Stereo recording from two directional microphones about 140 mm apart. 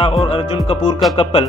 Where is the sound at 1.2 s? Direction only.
40° left (ahead or behind).